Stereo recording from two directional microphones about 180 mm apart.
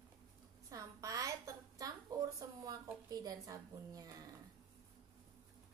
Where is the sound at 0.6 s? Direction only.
20° right (ahead or behind).